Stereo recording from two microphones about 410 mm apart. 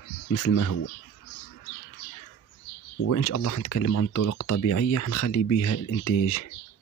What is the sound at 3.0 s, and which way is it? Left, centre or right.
Speech, left.